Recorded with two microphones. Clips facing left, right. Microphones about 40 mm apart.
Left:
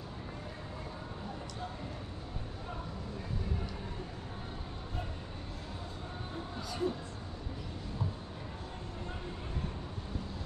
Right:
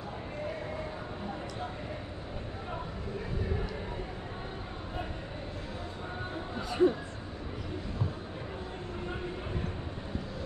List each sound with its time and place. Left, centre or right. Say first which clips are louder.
6.5 s speech: right 10 dB; right